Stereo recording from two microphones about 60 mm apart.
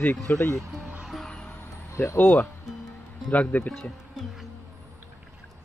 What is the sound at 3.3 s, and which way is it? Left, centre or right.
Speech, left.